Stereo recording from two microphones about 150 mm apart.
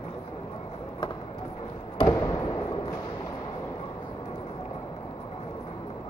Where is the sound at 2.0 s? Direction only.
25° left (ahead or behind).